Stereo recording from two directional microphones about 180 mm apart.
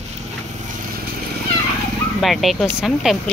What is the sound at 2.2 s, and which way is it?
Speech, centre (ahead or behind).